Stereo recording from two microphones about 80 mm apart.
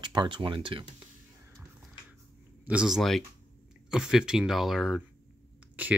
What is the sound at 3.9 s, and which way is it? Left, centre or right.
Speech, centre.